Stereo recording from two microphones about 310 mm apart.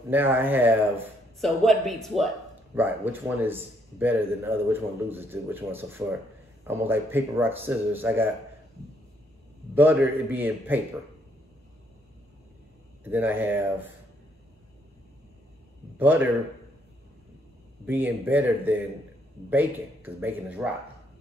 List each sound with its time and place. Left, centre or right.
0.1 s a man's voice: centre
9.8 s speech: centre
13.0 s a man's voice: centre
16.0 s speech: centre
17.8 s speech: centre